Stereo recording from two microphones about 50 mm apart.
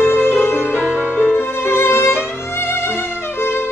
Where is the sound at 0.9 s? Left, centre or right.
Centre.